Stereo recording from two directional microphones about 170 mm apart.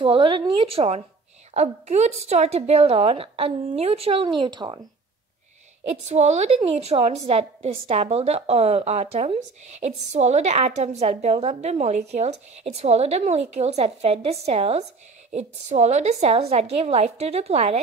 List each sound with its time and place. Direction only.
0.0 s a woman's voice: 30° right (ahead or behind)
5.9 s a woman's voice: 40° right (ahead or behind)